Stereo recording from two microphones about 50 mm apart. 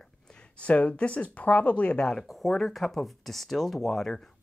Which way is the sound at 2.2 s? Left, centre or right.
Centre.